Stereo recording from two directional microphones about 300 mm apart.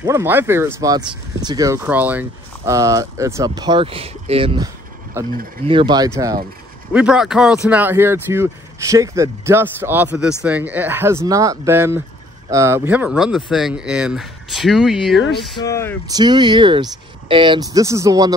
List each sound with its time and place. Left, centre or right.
0.0 s speech: centre
5.7 s speech: centre
15.5 s speech: centre
16.1 s speech: centre